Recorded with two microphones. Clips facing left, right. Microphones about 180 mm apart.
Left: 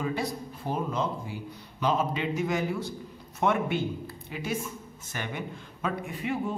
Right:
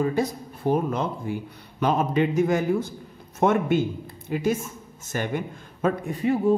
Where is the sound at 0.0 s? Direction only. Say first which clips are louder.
Right 7 dB; 45° right (ahead or behind).